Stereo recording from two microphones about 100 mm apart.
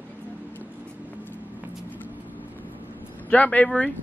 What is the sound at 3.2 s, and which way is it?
Speech, 15° left (ahead or behind).